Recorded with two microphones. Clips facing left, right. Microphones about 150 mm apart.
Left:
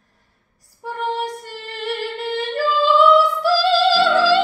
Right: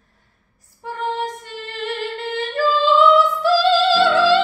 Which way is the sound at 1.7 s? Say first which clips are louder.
Left 1 dB; 10° left (ahead or behind).